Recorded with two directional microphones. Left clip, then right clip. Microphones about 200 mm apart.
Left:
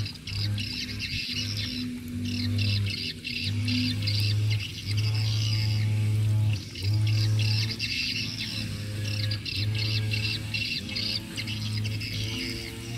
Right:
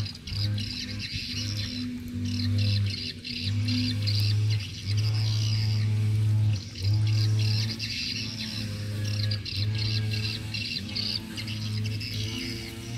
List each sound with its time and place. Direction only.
0.4 s music: 35° right (ahead or behind)
2.6 s squawk: 35° right (ahead or behind)
7.2 s music: 35° right (ahead or behind)
9.5 s music: 35° right (ahead or behind)